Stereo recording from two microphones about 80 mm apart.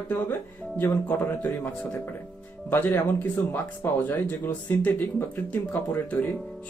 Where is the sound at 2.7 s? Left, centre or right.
Left.